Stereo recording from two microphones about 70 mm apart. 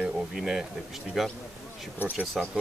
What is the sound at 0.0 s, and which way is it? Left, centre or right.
Bee, centre.